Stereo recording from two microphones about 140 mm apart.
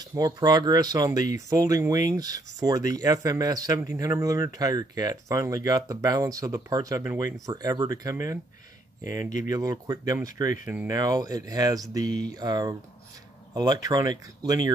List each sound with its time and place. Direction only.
0.0 s a man's voice: 25° right (ahead or behind)